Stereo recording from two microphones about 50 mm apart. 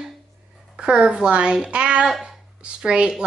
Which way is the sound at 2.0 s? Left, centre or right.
Centre.